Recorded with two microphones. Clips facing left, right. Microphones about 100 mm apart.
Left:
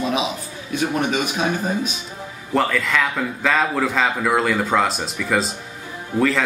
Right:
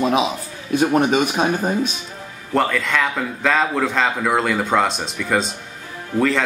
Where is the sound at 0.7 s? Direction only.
45° right (ahead or behind).